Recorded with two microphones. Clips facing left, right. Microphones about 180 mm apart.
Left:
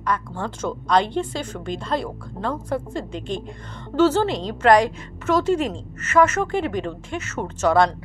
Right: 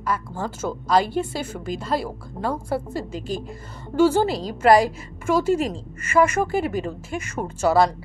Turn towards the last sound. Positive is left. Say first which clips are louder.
# even
turn(degrees=-5)  # may be behind; listen again after turning